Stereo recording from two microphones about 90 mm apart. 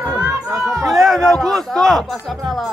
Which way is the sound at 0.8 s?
Centre (ahead or behind).